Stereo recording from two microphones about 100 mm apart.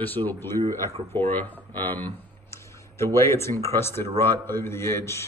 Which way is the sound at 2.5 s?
30° left (ahead or behind).